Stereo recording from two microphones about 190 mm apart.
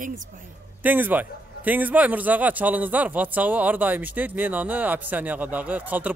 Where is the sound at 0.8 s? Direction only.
10° right (ahead or behind).